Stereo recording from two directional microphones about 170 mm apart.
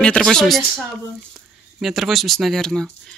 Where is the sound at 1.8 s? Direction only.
Centre (ahead or behind).